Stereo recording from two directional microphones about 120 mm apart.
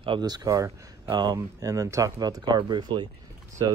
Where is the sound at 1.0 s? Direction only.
40° right (ahead or behind).